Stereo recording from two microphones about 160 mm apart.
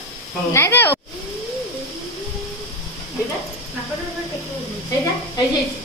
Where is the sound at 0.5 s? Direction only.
15° left (ahead or behind).